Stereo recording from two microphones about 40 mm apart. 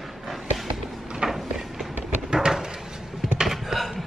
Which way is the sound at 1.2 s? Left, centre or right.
Right.